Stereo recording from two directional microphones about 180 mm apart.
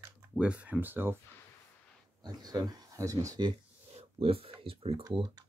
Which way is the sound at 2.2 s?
20° right (ahead or behind).